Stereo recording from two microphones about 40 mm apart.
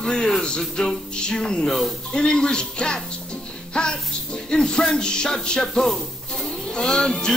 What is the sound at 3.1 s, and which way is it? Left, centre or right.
Music, left.